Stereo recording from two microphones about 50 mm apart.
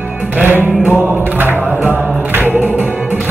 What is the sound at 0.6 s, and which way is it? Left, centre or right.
Chant, right.